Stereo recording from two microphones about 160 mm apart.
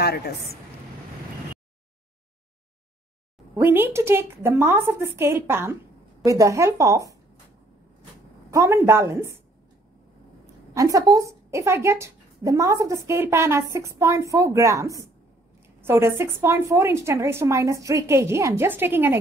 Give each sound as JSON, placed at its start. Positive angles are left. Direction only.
{"t": 0.0, "sound": "a woman's voice", "side_deg": 75}
{"t": 3.5, "sound": "a woman's voice", "side_deg": -15}
{"t": 8.5, "sound": "a woman's voice", "side_deg": -20}
{"t": 10.4, "sound": "a woman's voice", "side_deg": -20}